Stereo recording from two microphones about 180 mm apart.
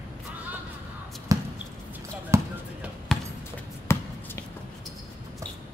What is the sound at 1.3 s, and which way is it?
Drip, 20° right (ahead or behind).